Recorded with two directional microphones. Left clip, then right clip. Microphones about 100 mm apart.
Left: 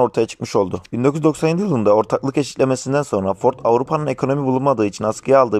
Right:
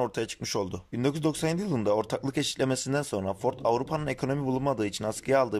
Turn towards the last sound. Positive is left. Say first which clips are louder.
# left 11 dB
turn(degrees=25)  # may be behind; listen again after turning